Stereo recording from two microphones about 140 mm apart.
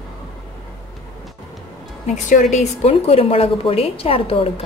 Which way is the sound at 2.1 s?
60° left (ahead or behind).